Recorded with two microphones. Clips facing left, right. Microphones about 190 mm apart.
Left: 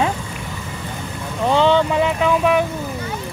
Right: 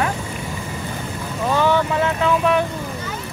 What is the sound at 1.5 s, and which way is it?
Boat, 20° left (ahead or behind).